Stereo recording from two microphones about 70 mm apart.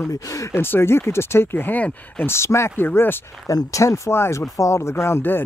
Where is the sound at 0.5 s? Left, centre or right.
Left.